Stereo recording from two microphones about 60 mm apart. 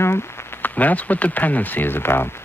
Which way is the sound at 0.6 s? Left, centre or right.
Left.